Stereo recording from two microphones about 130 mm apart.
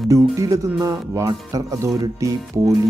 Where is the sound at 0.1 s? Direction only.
25° right (ahead or behind).